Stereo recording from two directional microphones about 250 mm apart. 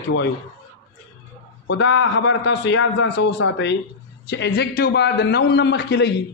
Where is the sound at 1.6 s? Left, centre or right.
Left.